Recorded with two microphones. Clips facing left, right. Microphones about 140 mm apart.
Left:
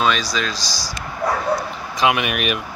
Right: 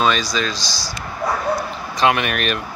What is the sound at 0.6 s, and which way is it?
Speech, 40° left (ahead or behind).